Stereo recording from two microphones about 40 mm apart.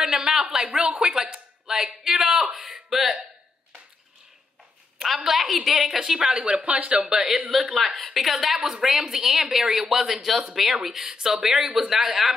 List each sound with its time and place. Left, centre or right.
0.0 s speech: centre
0.7 s speech: right; by 3.3 s centre
5.0 s a woman's voice: centre; by 7.0 s right
7.0 s a woman's voice: centre